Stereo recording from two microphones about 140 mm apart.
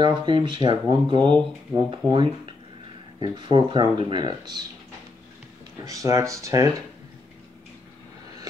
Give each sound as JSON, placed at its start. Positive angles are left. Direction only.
{"t": 0.0, "sound": "speech", "side_deg": -35}
{"t": 5.9, "sound": "speech", "side_deg": -20}